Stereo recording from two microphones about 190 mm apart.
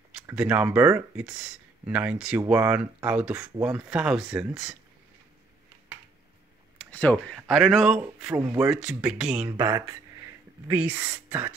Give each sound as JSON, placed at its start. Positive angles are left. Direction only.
{"t": 0.3, "sound": "speech", "side_deg": -10}
{"t": 6.8, "sound": "speech", "side_deg": 5}
{"t": 9.5, "sound": "speech", "side_deg": -15}